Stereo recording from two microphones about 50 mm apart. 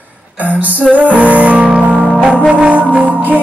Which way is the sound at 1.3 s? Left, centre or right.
Right.